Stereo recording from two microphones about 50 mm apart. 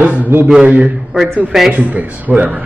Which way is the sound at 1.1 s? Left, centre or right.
Centre.